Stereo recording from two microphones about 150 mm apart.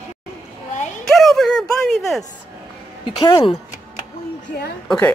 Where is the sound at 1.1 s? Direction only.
Centre (ahead or behind).